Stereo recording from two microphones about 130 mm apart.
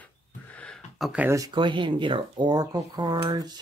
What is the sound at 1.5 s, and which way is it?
Speech, 35° right (ahead or behind).